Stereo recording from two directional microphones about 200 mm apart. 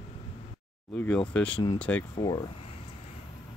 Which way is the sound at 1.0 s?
5° left (ahead or behind).